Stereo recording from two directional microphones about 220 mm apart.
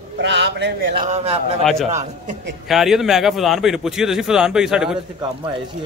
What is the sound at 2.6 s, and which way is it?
A man's voice, centre (ahead or behind).